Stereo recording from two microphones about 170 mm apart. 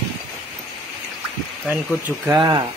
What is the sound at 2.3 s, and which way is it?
Speech, 25° right (ahead or behind).